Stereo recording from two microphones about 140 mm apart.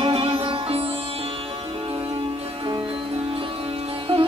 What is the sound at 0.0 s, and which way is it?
Music, 40° right (ahead or behind).